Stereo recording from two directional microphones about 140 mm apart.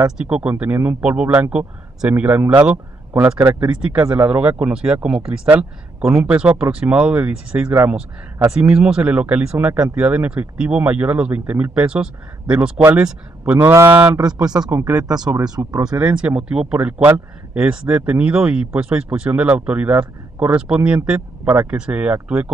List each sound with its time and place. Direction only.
0.2 s speech: 10° right (ahead or behind); by 16.0 s 25° right (ahead or behind)
16.0 s speech: 10° right (ahead or behind)